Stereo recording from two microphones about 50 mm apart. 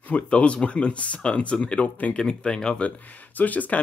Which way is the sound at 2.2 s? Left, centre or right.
Centre.